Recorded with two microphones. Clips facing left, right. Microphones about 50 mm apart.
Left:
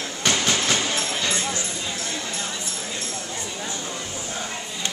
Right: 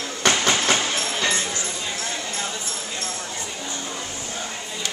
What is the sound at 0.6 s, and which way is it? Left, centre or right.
Train, right.